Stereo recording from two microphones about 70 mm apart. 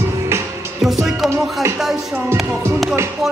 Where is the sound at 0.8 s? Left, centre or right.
Centre.